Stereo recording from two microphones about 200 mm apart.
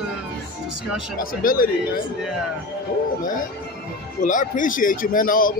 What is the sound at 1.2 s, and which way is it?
Speech, 45° left (ahead or behind).